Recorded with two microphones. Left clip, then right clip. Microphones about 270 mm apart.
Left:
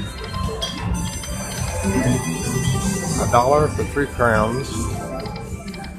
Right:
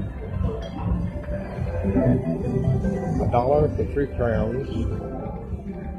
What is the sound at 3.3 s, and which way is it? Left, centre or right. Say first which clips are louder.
Speech: left 5 dB; centre.